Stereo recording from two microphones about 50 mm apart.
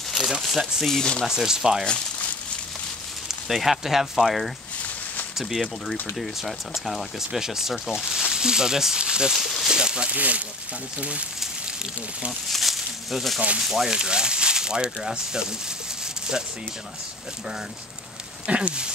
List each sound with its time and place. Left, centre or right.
0.2 s speech: centre
0.8 s speech: centre
1.2 s speech: centre
3.3 s speech: centre
9.3 s speech: centre
9.7 s a sound: centre
10.1 s speech: right
12.4 s a sound: centre
13.6 s speech: centre
18.5 s speech: centre